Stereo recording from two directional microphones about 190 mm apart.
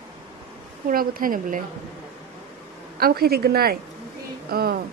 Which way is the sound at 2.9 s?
55° right (ahead or behind).